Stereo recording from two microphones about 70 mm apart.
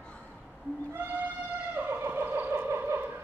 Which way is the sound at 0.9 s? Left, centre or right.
Right.